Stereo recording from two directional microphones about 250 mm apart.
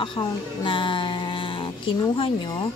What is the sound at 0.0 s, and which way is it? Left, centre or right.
A child's voice, centre.